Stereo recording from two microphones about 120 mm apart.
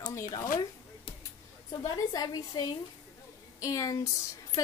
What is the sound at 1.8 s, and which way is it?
Speech, 30° left (ahead or behind).